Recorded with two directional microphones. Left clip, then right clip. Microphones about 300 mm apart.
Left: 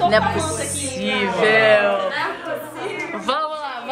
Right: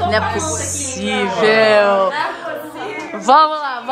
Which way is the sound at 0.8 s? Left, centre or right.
Centre.